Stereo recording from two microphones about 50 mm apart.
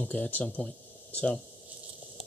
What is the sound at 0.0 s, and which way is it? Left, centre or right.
Speech, left.